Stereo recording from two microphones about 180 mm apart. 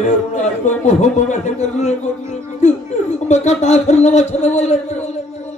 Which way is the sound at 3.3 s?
40° left (ahead or behind).